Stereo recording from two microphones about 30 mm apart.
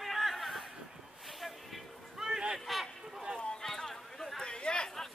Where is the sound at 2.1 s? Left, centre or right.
Right.